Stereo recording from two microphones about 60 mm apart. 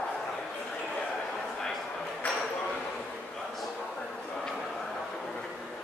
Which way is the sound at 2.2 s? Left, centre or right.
Left.